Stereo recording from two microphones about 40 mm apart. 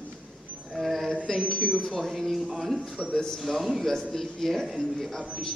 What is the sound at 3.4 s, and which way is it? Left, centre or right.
A man's voice, centre.